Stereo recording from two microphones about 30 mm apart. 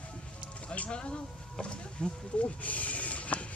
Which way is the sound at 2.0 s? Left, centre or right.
Left.